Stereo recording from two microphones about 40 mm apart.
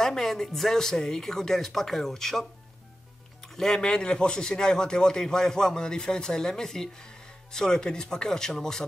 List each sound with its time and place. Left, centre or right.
0.0 s a man's voice: centre
3.5 s a man's voice: centre